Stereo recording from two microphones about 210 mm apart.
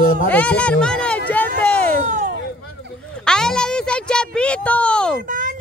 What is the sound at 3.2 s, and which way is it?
Speech, 5° left (ahead or behind).